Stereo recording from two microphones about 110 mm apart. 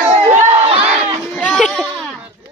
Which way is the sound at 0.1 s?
80° right.